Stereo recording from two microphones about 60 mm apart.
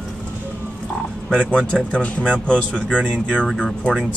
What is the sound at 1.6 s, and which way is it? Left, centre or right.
A man's voice, centre.